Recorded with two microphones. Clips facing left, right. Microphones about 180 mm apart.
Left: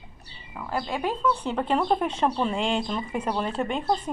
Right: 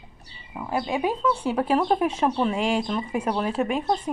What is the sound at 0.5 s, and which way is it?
Speech, 20° right (ahead or behind).